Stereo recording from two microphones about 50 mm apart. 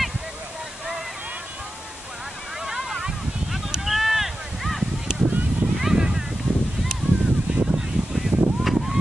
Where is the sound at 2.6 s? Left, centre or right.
Centre.